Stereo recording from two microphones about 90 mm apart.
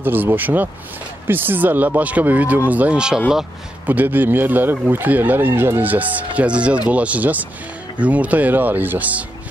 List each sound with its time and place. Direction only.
0.0 s speech: 20° right (ahead or behind)